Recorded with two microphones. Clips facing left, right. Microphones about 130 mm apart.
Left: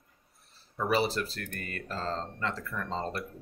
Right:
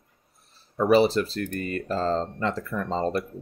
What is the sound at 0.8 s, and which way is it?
Speech, 25° right (ahead or behind).